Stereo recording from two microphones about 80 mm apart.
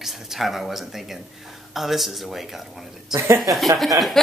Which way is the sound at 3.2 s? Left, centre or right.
Right.